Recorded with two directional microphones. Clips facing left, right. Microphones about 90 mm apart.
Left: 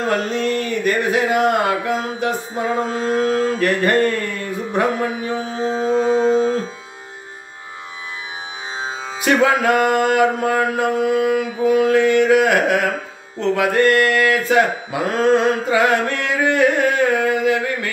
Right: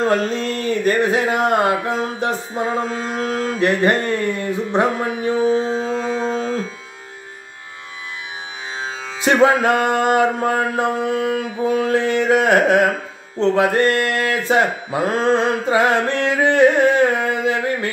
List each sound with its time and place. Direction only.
0.0 s a sound: 35° right (ahead or behind)
0.6 s speech: 30° right (ahead or behind)
2.9 s mantra: 25° left (ahead or behind)
3.5 s mantra: 20° right (ahead or behind)
5.9 s a sound: 25° left (ahead or behind)
8.7 s music: 20° left (ahead or behind)
9.2 s mantra: 30° right (ahead or behind)